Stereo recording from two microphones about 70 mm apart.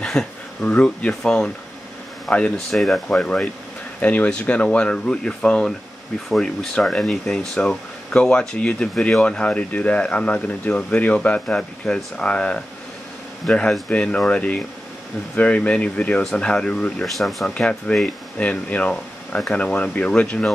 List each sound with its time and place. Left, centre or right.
0.0 s a sound: centre
0.6 s speech: centre
2.5 s speech: centre
3.2 s speech: centre
17.0 s speech: centre
17.6 s speech: centre